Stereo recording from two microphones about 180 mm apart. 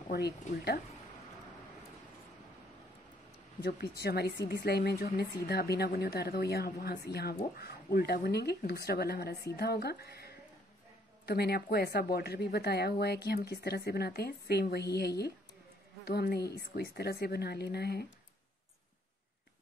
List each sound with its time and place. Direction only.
0.1 s speech: 60° left (ahead or behind)
3.6 s speech: 60° left (ahead or behind)